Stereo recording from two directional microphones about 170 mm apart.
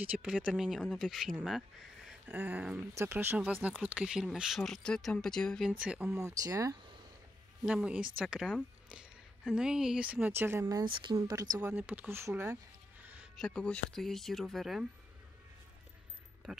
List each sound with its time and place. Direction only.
0.2 s speech: 5° right (ahead or behind)
5.7 s speech: 5° right (ahead or behind)
6.1 s speech: 20° right (ahead or behind)
7.6 s speech: 5° right (ahead or behind)
10.8 s speech: 25° right (ahead or behind)
13.0 s music: 10° right (ahead or behind)
13.4 s speech: 5° left (ahead or behind)